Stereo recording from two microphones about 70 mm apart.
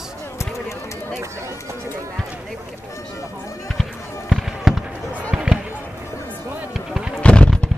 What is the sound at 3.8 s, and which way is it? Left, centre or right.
Fireworks, centre.